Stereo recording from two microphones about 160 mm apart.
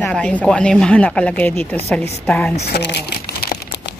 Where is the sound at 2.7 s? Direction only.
90° left.